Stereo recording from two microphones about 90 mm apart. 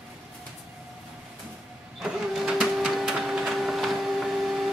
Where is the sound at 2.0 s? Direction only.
10° right (ahead or behind).